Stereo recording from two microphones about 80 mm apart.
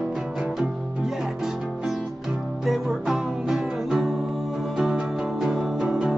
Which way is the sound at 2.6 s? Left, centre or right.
Centre.